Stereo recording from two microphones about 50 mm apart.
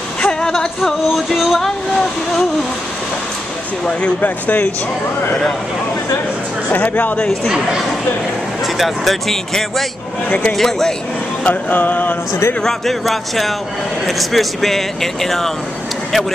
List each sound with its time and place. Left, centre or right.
0.2 s a sound: centre
1.3 s speech: centre
4.2 s music: left
6.7 s music: left
7.4 s speech: centre
8.7 s speech: centre
11.4 s music: left
12.6 s speech: centre